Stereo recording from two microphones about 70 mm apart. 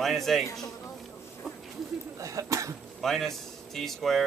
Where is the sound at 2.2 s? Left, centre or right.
Right.